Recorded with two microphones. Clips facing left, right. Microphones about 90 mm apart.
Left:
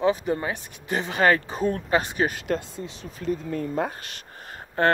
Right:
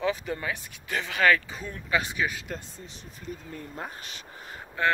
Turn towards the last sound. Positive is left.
turn(degrees=45)  # may be behind; listen again after turning